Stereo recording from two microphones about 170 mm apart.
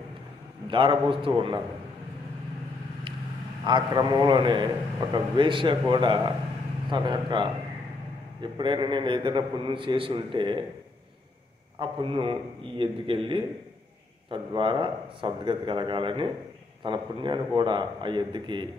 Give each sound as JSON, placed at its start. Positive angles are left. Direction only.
{"t": 0.7, "sound": "a man's voice", "side_deg": -30}
{"t": 3.6, "sound": "a man's voice", "side_deg": -25}
{"t": 11.8, "sound": "a man's voice", "side_deg": -30}